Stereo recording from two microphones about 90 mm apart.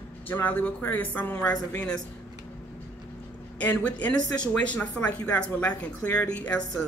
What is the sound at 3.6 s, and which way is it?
Speech, 15° left (ahead or behind).